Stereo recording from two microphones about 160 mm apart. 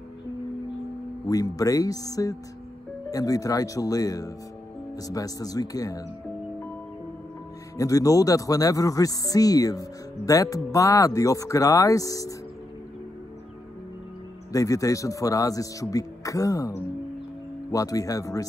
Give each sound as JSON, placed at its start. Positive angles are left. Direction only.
{"t": 1.2, "sound": "speech", "side_deg": 20}
{"t": 7.7, "sound": "speech", "side_deg": 20}
{"t": 14.5, "sound": "speech", "side_deg": 20}